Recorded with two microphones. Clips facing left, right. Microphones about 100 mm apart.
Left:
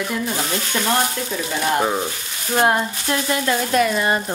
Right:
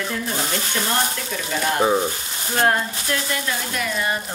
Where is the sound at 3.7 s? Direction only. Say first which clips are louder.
Left 7 dB; 40° left (ahead or behind).